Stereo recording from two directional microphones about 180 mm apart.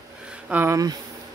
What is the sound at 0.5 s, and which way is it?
Speech, 15° right (ahead or behind).